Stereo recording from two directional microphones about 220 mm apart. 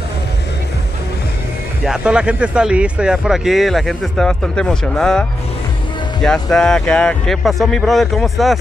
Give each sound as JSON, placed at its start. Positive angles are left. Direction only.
{"t": 1.9, "sound": "speech", "side_deg": -5}
{"t": 6.2, "sound": "speech", "side_deg": 5}